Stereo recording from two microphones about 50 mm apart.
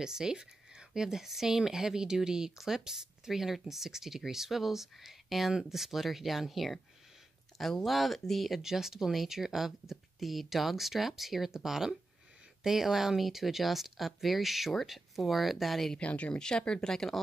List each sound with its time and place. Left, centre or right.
0.0 s speech: centre
16.0 s speech: left; by 17.2 s centre